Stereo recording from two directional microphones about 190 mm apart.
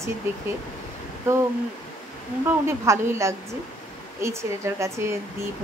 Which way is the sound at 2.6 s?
15° right (ahead or behind).